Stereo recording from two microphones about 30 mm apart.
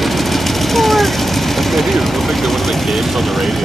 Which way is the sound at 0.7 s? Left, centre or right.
Centre.